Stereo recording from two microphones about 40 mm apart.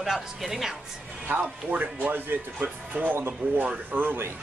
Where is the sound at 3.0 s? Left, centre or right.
Right.